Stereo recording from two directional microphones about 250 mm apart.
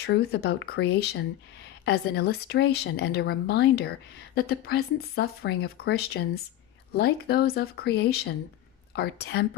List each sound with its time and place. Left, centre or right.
0.0 s speech: left